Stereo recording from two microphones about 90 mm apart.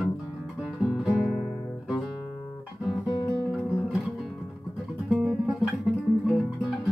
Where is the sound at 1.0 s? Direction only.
Centre (ahead or behind).